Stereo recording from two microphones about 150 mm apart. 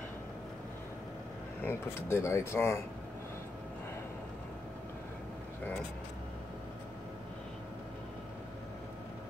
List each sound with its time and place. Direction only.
1.6 s speech: 15° left (ahead or behind)